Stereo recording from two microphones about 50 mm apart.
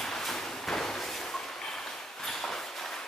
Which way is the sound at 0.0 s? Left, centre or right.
Centre.